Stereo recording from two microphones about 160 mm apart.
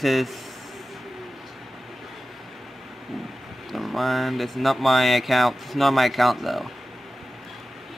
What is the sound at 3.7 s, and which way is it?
Speech, centre (ahead or behind).